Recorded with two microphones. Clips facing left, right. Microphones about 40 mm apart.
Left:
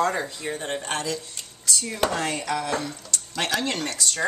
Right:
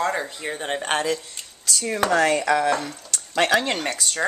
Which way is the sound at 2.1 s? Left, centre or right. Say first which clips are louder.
Right 8 dB; right.